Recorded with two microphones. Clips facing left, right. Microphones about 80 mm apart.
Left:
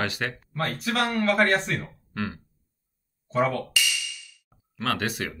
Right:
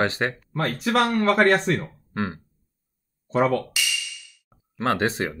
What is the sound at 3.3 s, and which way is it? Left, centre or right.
Speech, right.